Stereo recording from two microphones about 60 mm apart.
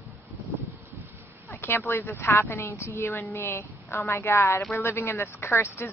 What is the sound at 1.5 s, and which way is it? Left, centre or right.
Speech, left.